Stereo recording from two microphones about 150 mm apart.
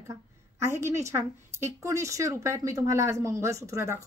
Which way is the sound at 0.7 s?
20° right (ahead or behind).